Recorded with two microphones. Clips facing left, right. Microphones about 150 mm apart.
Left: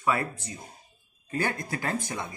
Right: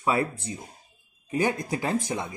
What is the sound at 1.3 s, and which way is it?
Speech, 15° right (ahead or behind).